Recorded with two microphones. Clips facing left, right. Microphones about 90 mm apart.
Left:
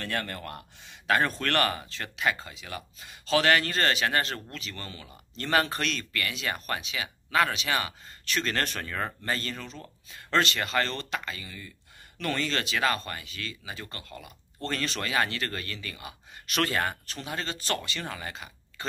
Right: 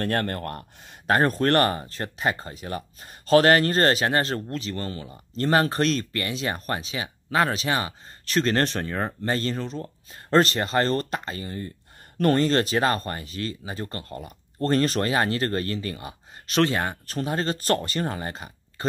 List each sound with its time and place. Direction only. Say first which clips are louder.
0.0 s speech: right 7 dB; 50° right (ahead or behind); by 17.0 s 20° right (ahead or behind)
17.0 s speech: right 8 dB; 40° right (ahead or behind)